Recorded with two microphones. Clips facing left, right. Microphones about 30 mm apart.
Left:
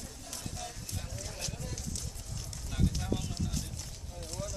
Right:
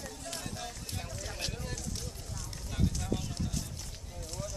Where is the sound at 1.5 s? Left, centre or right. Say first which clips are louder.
Right 2 dB; right.